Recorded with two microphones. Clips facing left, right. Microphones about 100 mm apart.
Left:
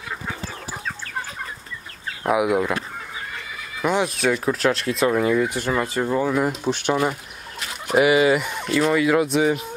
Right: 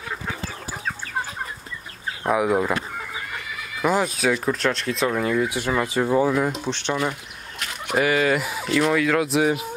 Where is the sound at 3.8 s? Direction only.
Centre (ahead or behind).